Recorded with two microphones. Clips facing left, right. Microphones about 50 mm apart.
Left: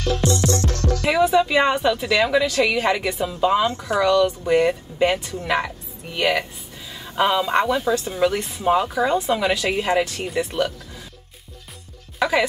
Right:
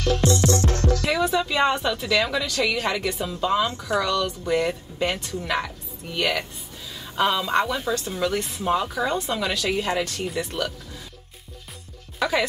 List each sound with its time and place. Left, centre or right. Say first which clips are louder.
0.2 s music: even; right
0.6 s music: right 1 dB; centre
1.2 s speech: left 6 dB; centre
12.2 s speech: left 3 dB; centre